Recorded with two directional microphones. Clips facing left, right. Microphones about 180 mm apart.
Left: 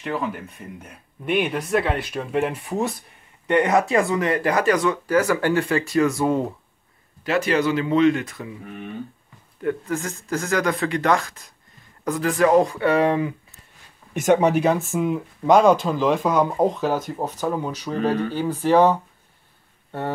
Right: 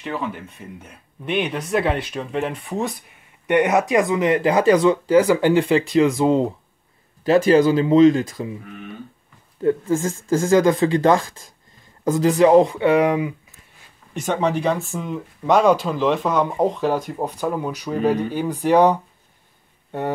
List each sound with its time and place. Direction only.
0.0 s speech: centre (ahead or behind)
3.4 s speech: 10° right (ahead or behind)
9.6 s speech: 25° right (ahead or behind)
14.2 s speech: 10° left (ahead or behind)
17.2 s speech: 10° right (ahead or behind)